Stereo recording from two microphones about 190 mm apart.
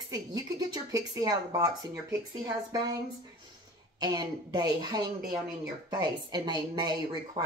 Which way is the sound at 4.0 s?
25° right (ahead or behind).